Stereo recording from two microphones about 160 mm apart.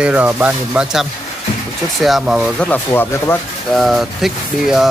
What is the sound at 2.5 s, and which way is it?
Speech, 10° left (ahead or behind).